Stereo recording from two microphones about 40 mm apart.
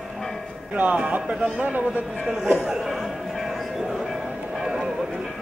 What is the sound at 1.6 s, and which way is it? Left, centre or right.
Speech, right.